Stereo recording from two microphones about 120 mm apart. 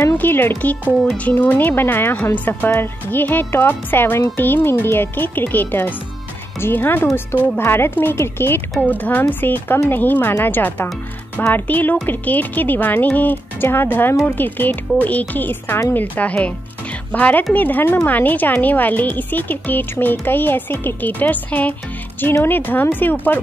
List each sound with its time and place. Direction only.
0.1 s speech: 15° left (ahead or behind)